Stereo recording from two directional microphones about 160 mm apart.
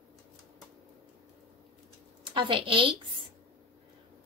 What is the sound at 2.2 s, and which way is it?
Speech, 30° right (ahead or behind).